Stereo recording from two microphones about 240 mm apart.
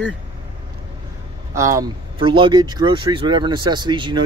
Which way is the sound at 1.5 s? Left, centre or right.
Centre.